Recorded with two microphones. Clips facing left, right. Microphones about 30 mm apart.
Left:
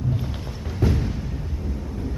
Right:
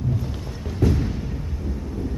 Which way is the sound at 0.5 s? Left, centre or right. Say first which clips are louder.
Right 2 dB; centre.